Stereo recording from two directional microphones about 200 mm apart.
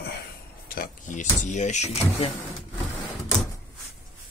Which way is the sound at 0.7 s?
40° left (ahead or behind).